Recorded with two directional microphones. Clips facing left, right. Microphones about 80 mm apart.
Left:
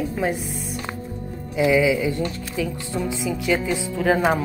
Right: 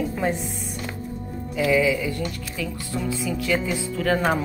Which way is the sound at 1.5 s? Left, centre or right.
Centre.